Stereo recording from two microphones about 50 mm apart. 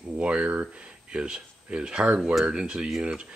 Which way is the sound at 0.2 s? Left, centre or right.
Right.